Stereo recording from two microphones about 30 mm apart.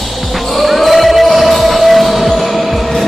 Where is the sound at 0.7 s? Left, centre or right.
Centre.